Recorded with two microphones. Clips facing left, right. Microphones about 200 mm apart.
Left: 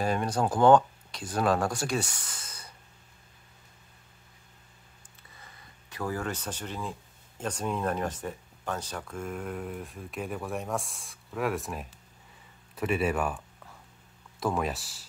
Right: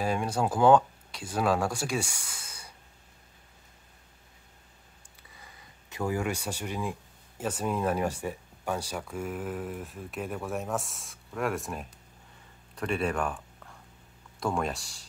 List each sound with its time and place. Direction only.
0.0 s speech: 5° right (ahead or behind)
5.4 s speech: 15° right (ahead or behind); by 15.0 s 5° left (ahead or behind)